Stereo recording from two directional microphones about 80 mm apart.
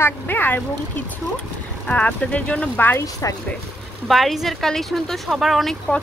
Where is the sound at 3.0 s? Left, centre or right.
Left.